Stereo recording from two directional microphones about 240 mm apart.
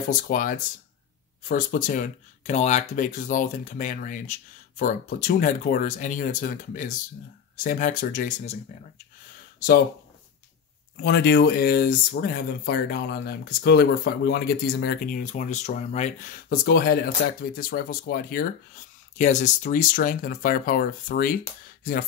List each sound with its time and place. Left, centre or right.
0.1 s speech: left
11.0 s speech: left